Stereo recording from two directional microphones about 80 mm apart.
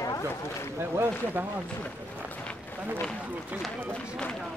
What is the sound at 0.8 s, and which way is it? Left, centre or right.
Speech, right.